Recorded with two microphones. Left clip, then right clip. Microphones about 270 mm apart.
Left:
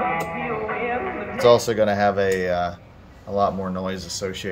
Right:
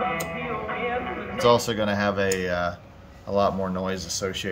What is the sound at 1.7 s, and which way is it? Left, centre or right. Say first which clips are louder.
Speech: left 5 dB; centre.